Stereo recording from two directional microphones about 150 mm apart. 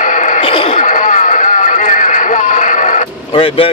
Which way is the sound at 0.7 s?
60° left (ahead or behind).